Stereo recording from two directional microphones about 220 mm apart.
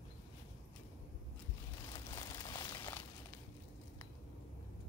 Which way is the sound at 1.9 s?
20° left (ahead or behind).